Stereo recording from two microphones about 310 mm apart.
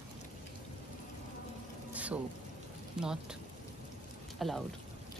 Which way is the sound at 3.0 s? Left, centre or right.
Centre.